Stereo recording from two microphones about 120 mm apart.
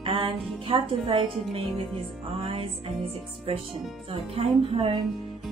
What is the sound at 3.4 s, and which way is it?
Speech, 50° right (ahead or behind).